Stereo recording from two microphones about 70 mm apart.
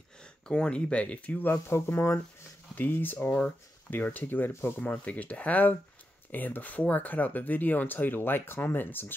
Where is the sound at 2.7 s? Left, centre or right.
Left.